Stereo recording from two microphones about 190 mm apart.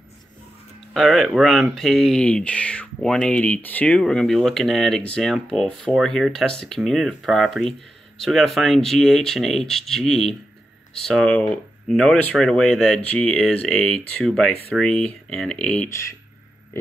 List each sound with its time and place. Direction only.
0.9 s speech: centre (ahead or behind)